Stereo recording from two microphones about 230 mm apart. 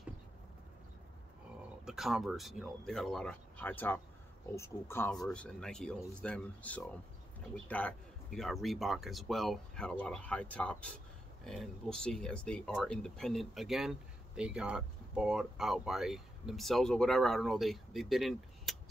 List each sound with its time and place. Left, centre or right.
1.9 s speech: centre